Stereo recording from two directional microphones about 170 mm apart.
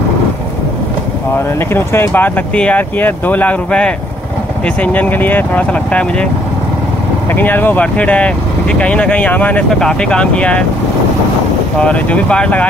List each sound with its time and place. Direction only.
1.7 s speech: 15° left (ahead or behind)
7.3 s speech: 10° left (ahead or behind)
11.8 s speech: 5° left (ahead or behind)